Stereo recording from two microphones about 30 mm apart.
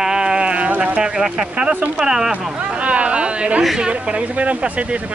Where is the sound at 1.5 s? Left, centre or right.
Right.